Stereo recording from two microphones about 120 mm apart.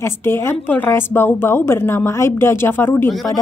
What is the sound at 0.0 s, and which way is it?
A woman's voice, 20° left (ahead or behind).